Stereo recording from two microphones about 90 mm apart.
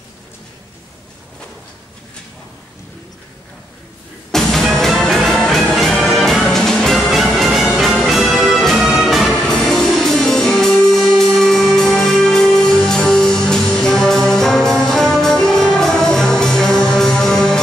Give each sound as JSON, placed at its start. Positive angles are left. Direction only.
{"t": 4.3, "sound": "music", "side_deg": 5}